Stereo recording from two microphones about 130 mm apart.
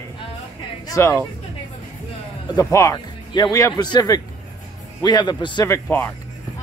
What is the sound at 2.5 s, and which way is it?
Speech, 25° left (ahead or behind).